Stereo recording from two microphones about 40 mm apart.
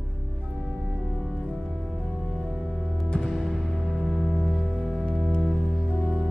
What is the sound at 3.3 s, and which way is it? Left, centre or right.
Music, centre.